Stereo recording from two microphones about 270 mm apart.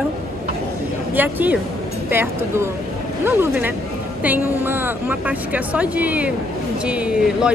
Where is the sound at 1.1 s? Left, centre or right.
Centre.